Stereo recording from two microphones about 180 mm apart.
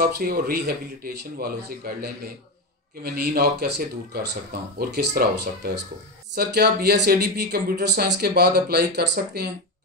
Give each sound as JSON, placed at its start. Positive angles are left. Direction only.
{"t": 0.0, "sound": "speech", "side_deg": -55}